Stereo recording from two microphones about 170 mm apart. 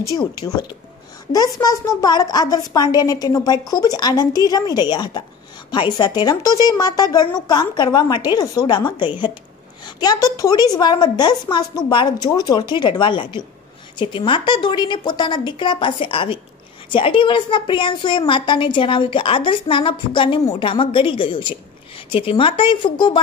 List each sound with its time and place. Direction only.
0.0 s a woman's voice: 20° left (ahead or behind)